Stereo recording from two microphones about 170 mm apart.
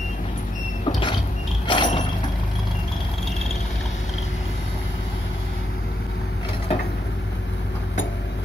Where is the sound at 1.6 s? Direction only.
30° left (ahead or behind).